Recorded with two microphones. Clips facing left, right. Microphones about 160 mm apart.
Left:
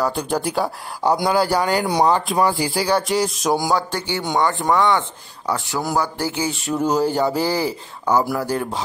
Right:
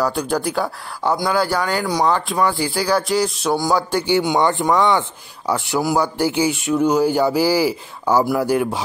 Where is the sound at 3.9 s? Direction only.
15° right (ahead or behind).